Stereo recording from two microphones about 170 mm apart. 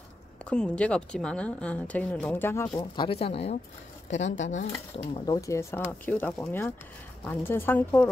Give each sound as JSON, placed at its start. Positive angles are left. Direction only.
{"t": 0.5, "sound": "a woman's voice", "side_deg": 5}
{"t": 2.8, "sound": "a woman's voice", "side_deg": 30}